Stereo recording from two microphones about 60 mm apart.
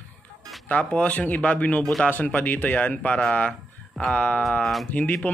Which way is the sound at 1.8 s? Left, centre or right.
Centre.